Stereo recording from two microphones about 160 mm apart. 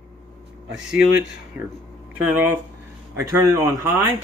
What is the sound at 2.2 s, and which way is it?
A man's voice, 10° right (ahead or behind).